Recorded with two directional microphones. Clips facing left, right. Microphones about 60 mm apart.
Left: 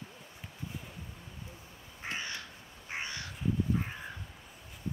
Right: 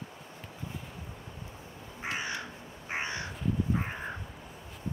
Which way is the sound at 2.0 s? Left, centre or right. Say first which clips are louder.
Right 4 dB; right.